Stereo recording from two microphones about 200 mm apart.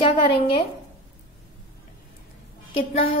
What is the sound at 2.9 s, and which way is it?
Speech, 25° left (ahead or behind).